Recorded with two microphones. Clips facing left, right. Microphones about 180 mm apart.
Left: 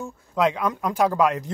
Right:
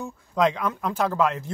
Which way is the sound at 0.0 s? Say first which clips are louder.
Even; 10° left (ahead or behind).